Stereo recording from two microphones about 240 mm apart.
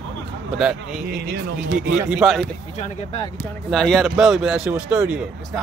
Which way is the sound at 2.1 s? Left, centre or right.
Centre.